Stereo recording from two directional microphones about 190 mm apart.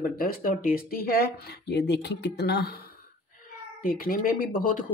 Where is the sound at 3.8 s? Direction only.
50° left (ahead or behind).